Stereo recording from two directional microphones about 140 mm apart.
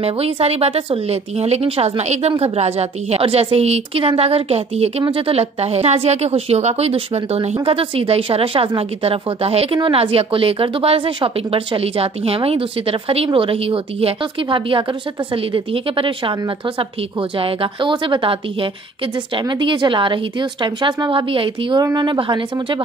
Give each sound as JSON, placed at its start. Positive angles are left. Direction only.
{"t": 0.0, "sound": "speech", "side_deg": -45}